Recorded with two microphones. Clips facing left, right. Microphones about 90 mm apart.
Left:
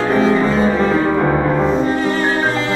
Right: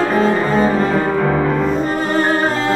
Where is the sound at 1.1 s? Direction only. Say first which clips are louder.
Left 1 dB; 10° left (ahead or behind).